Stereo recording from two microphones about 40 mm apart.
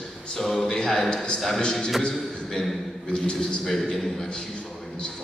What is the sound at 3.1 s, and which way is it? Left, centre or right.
Speech, left.